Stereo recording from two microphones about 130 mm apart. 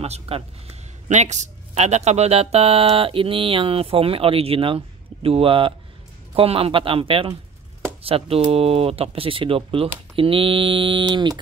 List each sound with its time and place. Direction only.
0.0 s a man's voice: 50° right (ahead or behind); by 11.3 s 35° right (ahead or behind)